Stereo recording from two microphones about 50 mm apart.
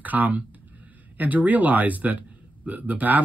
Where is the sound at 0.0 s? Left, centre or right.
Right.